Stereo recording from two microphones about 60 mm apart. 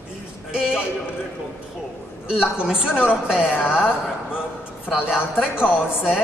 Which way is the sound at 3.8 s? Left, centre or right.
Left.